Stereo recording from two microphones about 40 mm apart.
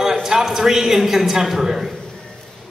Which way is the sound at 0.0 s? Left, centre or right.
Centre.